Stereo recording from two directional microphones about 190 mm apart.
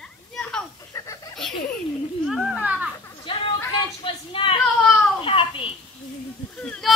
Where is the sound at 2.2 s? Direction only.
Centre (ahead or behind).